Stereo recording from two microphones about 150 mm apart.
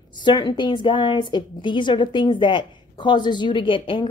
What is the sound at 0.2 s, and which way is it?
A woman's voice, 30° left (ahead or behind).